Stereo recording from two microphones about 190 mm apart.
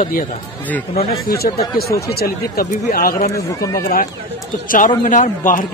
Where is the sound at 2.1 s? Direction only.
55° left (ahead or behind).